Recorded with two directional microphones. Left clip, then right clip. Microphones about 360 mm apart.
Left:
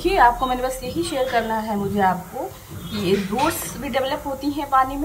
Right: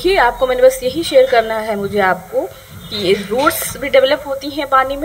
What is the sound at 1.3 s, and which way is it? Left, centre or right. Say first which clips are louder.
Speech: right 8 dB; right.